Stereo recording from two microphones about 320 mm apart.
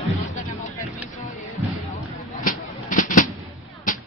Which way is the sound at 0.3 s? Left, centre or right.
Left.